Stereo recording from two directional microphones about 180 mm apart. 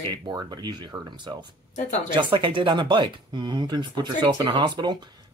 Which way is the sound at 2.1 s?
30° right (ahead or behind).